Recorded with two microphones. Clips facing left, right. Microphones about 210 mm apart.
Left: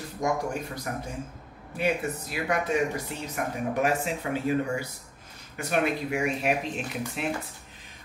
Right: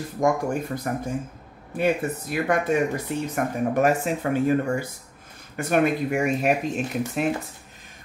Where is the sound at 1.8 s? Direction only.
50° right (ahead or behind).